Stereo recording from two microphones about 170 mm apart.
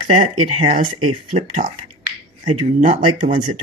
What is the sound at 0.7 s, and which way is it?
Speech, 30° right (ahead or behind).